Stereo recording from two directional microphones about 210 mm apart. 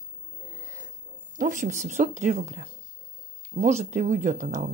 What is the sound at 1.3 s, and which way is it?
Speech, 35° right (ahead or behind).